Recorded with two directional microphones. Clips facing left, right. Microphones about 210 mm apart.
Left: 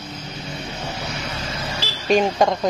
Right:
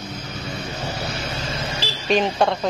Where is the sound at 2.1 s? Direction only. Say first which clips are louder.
Left 2 dB; 10° left (ahead or behind).